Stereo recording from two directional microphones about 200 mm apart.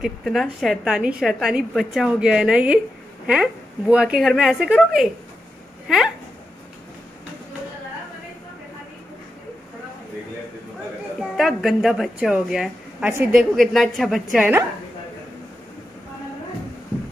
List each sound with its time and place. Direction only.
0.0 s a woman's voice: centre (ahead or behind)
11.1 s a woman's voice: centre (ahead or behind)